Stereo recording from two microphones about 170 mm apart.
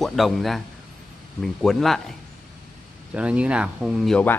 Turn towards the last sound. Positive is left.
turn(degrees=10)  # may be behind; listen again after turning